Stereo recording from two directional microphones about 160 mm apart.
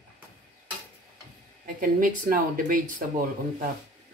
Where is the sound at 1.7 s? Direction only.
60° right (ahead or behind).